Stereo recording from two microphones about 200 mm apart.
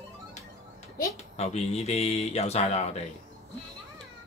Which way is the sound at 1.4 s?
30° left (ahead or behind).